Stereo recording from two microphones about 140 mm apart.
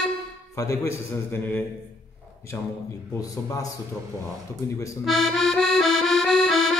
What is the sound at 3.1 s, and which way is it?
Speech, 25° left (ahead or behind).